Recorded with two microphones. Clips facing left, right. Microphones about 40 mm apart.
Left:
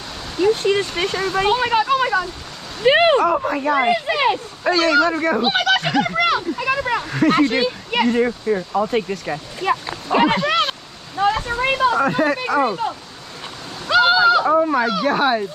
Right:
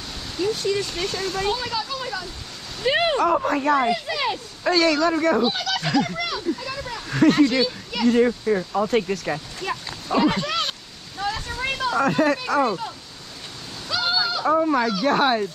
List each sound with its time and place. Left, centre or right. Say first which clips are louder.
0.4 s speech: left 6 dB; left
2.8 s speech: left 7 dB; left
3.3 s speech: left 1 dB; centre
3.7 s speech: left 4 dB; left
5.4 s a sound: left 6 dB; left
7.1 s speech: right 2 dB; centre
7.3 s speech: left 2 dB; left
8.2 s speech: even; centre
9.6 s a sound: left 8 dB; left
12.0 s speech: left 2 dB; centre
13.8 s horse: left 11 dB; left
14.4 s speech: left 3 dB; centre